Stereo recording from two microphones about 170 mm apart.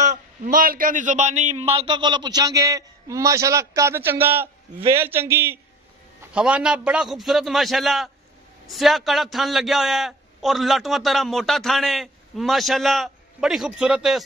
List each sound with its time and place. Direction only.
0.0 s a man's voice: 55° right (ahead or behind)
1.7 s a man's voice: 25° right (ahead or behind); by 14.2 s 5° right (ahead or behind)